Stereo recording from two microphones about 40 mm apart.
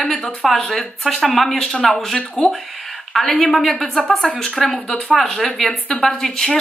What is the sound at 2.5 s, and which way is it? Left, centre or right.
A woman's voice, centre.